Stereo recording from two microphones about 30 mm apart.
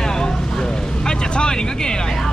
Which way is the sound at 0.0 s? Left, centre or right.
Left.